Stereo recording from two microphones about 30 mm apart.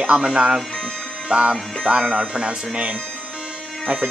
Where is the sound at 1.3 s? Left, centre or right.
Right.